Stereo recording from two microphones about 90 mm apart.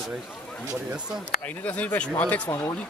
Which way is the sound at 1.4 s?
15° left (ahead or behind).